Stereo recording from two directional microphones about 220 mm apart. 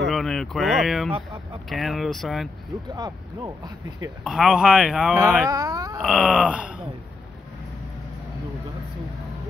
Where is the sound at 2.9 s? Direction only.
20° right (ahead or behind).